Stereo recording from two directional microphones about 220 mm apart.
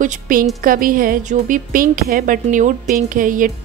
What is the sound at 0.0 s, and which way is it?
A woman's voice, 35° right (ahead or behind).